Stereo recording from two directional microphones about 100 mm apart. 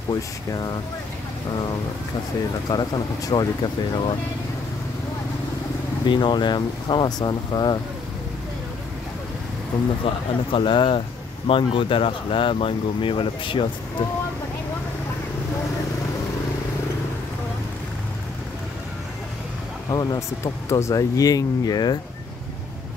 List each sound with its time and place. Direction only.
2.7 s speech: 45° left (ahead or behind)
6.0 s speech: 50° left (ahead or behind)
10.0 s speech: 60° left (ahead or behind)
19.9 s speech: 40° left (ahead or behind)